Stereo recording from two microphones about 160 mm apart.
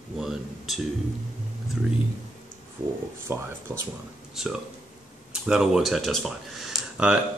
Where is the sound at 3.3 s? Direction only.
15° right (ahead or behind).